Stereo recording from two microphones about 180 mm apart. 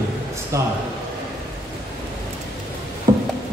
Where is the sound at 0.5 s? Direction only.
15° right (ahead or behind).